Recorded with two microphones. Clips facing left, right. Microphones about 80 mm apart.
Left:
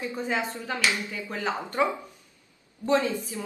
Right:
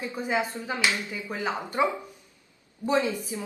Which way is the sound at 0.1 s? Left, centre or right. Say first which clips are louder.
Right 1 dB; centre.